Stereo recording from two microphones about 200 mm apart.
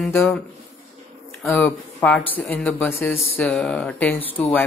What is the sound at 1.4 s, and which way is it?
Speech, 5° left (ahead or behind).